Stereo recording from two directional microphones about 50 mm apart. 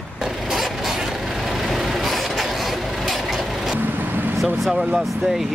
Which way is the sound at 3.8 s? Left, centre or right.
Right.